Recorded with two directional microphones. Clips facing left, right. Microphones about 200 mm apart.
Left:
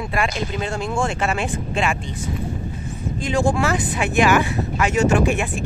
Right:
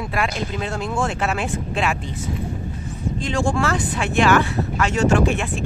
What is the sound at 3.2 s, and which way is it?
Speech, 5° left (ahead or behind).